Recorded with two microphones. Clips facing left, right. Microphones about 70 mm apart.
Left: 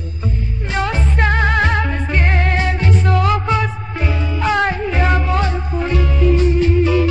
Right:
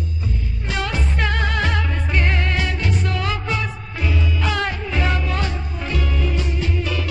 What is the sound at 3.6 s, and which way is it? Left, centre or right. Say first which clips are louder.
Music: left 4 dB; left.